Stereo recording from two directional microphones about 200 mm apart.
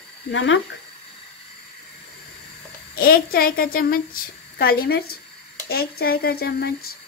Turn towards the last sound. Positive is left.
turn(degrees=50)  # may be behind; listen again after turning